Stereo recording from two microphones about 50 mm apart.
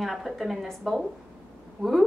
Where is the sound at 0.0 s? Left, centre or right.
Centre.